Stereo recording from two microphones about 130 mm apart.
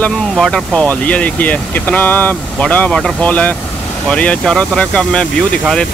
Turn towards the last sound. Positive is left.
turn(degrees=5)  # may be behind; listen again after turning